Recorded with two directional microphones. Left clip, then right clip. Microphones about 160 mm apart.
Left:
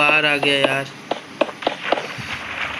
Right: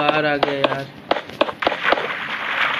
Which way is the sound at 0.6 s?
5° right (ahead or behind).